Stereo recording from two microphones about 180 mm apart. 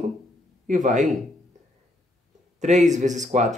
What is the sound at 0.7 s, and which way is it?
Speech, 45° right (ahead or behind).